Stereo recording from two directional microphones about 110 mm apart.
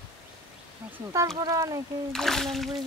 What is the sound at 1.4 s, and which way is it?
Speech, 30° right (ahead or behind).